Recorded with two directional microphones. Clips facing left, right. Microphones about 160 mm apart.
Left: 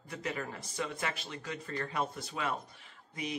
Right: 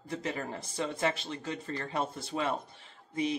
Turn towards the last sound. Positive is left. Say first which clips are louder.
# right 8 dB
turn(degrees=-30)  # may be behind; listen again after turning